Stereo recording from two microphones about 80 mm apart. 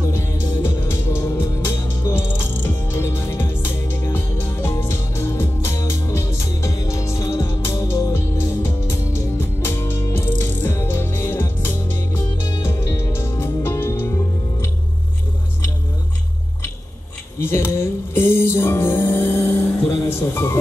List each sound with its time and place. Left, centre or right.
0.1 s music: left
17.4 s music: left